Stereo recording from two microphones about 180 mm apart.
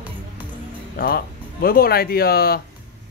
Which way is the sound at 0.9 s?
55° left (ahead or behind).